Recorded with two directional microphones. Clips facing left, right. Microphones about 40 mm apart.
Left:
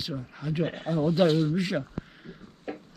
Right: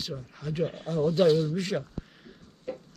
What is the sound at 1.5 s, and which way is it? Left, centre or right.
Speech, centre.